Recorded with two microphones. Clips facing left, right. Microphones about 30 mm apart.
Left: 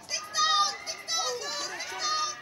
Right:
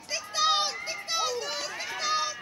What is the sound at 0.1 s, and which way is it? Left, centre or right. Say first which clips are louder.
Children playing: right 1 dB; centre.